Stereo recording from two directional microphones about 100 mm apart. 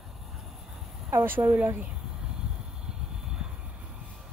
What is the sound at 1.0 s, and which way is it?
Speech, 20° right (ahead or behind).